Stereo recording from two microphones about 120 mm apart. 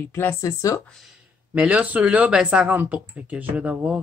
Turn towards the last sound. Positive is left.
turn(degrees=-10)  # may be behind; listen again after turning